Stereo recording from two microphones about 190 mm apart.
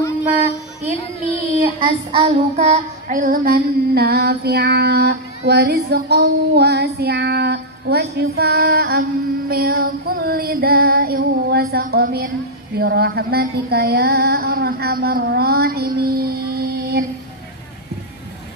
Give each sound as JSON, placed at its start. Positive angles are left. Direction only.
{"t": 0.9, "sound": "child singing", "side_deg": 35}
{"t": 2.1, "sound": "child singing", "side_deg": -35}